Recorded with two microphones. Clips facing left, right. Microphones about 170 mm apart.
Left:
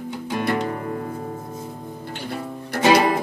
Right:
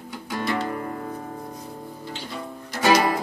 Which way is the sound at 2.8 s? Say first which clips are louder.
Left 3 dB; 25° left (ahead or behind).